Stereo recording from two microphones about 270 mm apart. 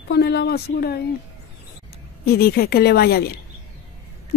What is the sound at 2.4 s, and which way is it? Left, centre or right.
Speech, left.